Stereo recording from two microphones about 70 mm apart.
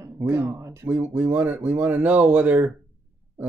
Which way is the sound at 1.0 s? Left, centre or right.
Right.